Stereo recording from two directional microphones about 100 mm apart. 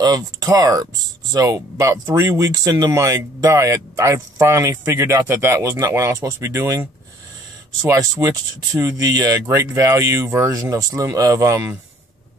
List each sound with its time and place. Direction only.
0.0 s speech: 35° right (ahead or behind)
8.2 s speech: 30° right (ahead or behind)
10.5 s speech: 40° right (ahead or behind)